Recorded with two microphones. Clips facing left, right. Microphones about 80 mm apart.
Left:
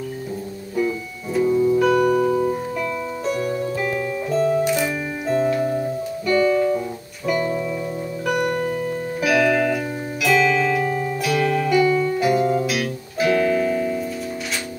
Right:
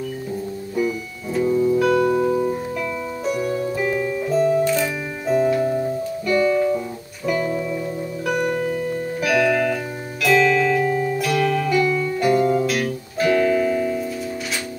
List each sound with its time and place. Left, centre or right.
0.7 s music: centre
1.9 s music: centre
2.2 s piano: centre
4.6 s music: centre
5.2 s music: centre